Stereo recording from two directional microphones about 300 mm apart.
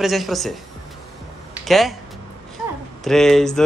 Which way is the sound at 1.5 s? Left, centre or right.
Centre.